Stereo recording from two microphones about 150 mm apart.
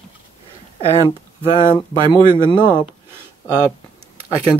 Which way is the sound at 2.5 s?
30° left (ahead or behind).